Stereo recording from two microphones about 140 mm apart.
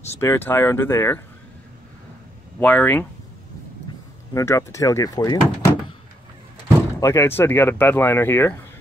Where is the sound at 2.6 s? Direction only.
10° left (ahead or behind).